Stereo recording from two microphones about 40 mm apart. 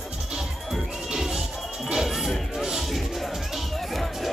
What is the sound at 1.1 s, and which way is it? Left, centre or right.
Music, centre.